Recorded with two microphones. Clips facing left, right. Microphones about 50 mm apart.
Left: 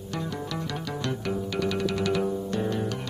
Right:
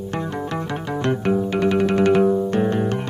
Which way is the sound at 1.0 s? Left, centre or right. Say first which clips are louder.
Right 11 dB; right.